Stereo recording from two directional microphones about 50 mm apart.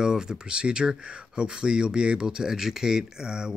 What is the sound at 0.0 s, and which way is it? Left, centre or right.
Speech, centre.